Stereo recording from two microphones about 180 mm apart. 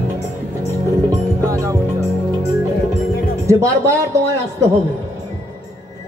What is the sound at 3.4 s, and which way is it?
Speech, 15° right (ahead or behind).